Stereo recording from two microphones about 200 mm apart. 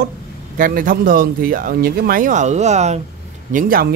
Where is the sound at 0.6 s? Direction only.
45° right (ahead or behind).